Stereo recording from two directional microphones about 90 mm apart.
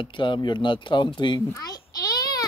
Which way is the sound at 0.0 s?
65° left (ahead or behind).